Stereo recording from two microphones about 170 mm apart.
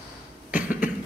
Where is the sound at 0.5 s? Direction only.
10° right (ahead or behind).